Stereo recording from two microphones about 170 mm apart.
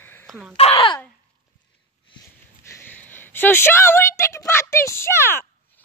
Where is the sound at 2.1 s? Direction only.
30° left (ahead or behind).